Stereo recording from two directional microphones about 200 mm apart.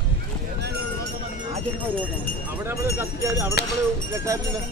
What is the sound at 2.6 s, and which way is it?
Speech, 10° right (ahead or behind).